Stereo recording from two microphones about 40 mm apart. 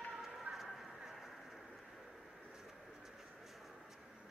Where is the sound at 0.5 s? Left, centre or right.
Centre.